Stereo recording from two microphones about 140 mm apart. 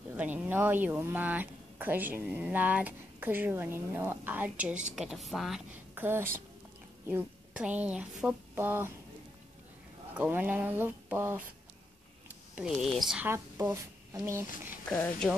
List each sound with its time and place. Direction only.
0.1 s speech: 15° right (ahead or behind)
5.7 s a woman's voice: 15° right (ahead or behind)
10.1 s speech: 10° right (ahead or behind)
13.2 s speech: 15° right (ahead or behind)
14.9 s speech: 5° left (ahead or behind)